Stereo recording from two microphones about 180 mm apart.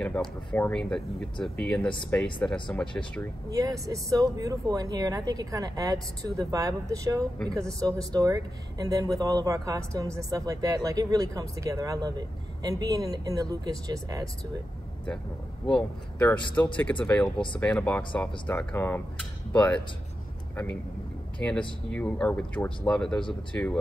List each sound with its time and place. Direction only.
0.0 s speech: 5° left (ahead or behind)
3.4 s speech: 20° right (ahead or behind)
15.6 s speech: 5° left (ahead or behind)
21.4 s speech: 5° left (ahead or behind)